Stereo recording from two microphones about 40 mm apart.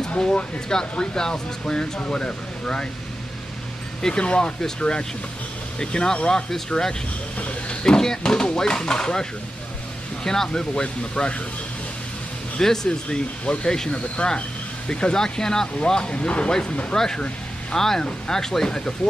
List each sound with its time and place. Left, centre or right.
0.2 s speech: centre
4.1 s speech: left
7.3 s speech: left
12.5 s speech: centre
15.8 s speech: left
16.9 s speech: centre
18.0 s speech: left
18.4 s speech: centre